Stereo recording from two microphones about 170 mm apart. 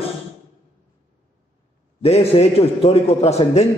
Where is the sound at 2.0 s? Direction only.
35° left (ahead or behind).